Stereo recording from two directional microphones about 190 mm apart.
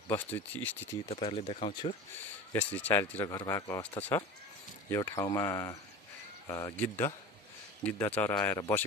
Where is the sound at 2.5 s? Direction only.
10° left (ahead or behind).